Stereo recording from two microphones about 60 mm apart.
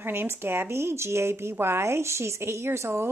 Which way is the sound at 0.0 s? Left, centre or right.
Right.